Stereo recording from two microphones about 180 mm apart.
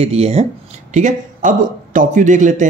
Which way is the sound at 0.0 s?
35° right (ahead or behind).